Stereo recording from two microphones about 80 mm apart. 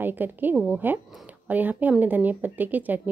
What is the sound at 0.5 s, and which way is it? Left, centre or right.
A woman's voice, centre.